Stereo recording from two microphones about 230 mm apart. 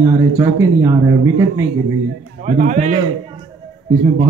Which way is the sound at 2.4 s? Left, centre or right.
Right.